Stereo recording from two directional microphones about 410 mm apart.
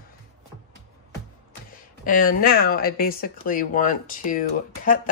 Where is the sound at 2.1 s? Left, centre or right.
Left.